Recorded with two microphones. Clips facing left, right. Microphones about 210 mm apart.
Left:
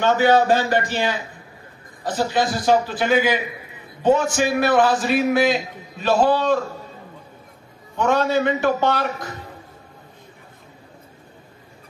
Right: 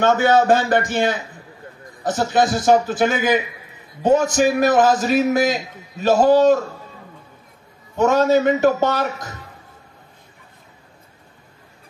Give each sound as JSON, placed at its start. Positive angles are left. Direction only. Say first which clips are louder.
{"t": 0.0, "sound": "a man's voice", "louder": "right 1 dB", "side_deg": -50}
{"t": 2.1, "sound": "a man's voice", "louder": "right 3 dB", "side_deg": -50}
{"t": 8.0, "sound": "a man's voice", "louder": "right 4 dB", "side_deg": -45}